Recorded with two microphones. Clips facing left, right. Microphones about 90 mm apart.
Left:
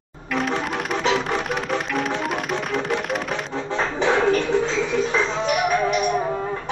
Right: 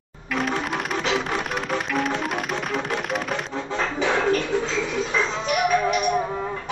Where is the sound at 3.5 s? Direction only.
25° left (ahead or behind).